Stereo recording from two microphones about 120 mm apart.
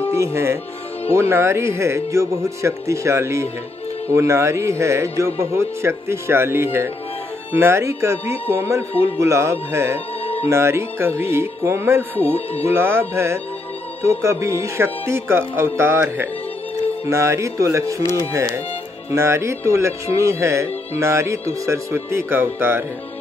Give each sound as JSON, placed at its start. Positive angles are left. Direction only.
{"t": 0.1, "sound": "speech", "side_deg": -20}
{"t": 10.2, "sound": "music", "side_deg": 55}
{"t": 10.5, "sound": "speech", "side_deg": -20}